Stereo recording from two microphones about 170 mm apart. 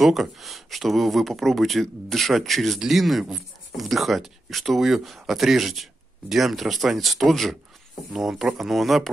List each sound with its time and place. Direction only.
0.0 s speech: centre (ahead or behind)